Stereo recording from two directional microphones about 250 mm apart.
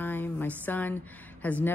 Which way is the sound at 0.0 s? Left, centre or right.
Centre.